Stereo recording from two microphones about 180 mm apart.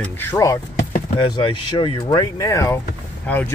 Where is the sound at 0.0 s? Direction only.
10° left (ahead or behind).